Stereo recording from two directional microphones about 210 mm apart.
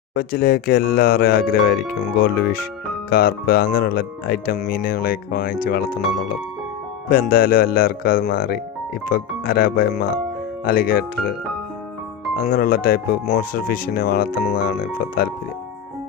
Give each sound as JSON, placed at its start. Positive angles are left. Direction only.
{"t": 0.1, "sound": "speech", "side_deg": 45}
{"t": 7.1, "sound": "speech", "side_deg": 45}
{"t": 12.4, "sound": "speech", "side_deg": 45}